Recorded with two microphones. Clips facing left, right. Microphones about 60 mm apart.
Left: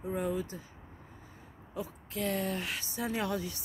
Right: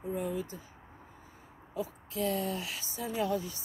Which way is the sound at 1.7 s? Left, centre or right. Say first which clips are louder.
Right 2 dB; left.